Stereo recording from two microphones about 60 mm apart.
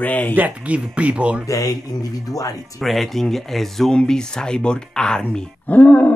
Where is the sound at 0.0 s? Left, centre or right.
Left.